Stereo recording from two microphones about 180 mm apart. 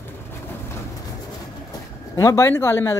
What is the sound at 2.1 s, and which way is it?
Speech, 15° left (ahead or behind).